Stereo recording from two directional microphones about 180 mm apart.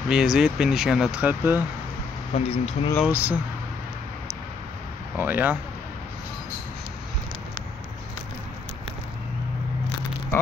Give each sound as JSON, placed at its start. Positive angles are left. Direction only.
{"t": 0.1, "sound": "speech", "side_deg": -5}
{"t": 2.3, "sound": "speech", "side_deg": 35}
{"t": 3.1, "sound": "speech", "side_deg": -10}
{"t": 5.1, "sound": "speech", "side_deg": -10}